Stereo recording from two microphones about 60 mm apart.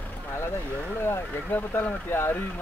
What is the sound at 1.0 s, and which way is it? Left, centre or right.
Vehicle, left.